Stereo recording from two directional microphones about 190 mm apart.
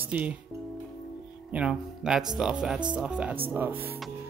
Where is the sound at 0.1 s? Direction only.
5° right (ahead or behind).